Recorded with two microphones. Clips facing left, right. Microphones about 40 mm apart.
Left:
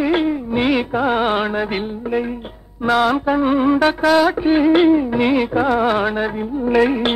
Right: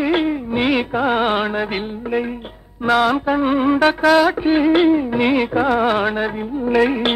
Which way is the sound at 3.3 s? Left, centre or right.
Right.